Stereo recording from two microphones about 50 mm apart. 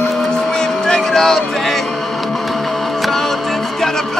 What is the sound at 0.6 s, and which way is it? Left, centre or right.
Music, centre.